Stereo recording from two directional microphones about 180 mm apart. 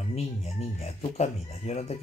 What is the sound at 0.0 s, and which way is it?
Speech, 35° left (ahead or behind).